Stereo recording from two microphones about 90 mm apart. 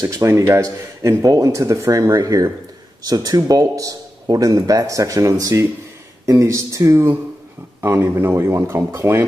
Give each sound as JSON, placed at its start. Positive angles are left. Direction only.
{"t": 0.0, "sound": "speech", "side_deg": -35}